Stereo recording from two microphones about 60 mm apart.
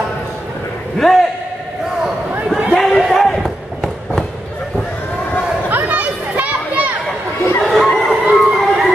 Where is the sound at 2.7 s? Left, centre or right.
Centre.